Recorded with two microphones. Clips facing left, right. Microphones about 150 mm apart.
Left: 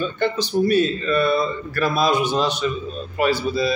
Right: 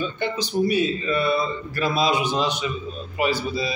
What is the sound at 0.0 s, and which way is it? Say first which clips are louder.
A man's voice: left 4 dB; 15° right (ahead or behind).